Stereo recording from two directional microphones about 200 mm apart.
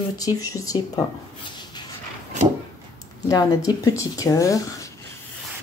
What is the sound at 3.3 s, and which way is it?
Speech, 15° left (ahead or behind).